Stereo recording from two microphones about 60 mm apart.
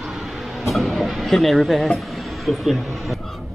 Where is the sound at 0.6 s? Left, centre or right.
Centre.